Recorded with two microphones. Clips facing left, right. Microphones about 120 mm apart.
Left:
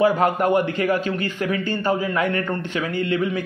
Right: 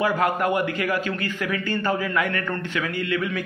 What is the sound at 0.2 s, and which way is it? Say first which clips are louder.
Speech: left 3 dB; 30° left (ahead or behind).